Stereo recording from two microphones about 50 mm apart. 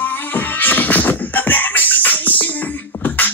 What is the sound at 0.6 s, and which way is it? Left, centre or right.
Music, left.